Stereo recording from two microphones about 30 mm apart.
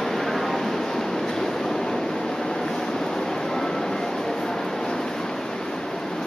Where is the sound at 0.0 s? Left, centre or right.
Centre.